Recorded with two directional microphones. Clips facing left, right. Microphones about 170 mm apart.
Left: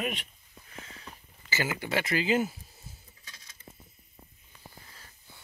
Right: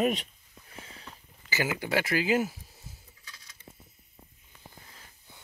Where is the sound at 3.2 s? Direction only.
20° left (ahead or behind).